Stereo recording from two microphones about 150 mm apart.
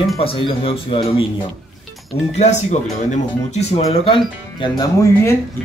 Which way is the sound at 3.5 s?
45° left (ahead or behind).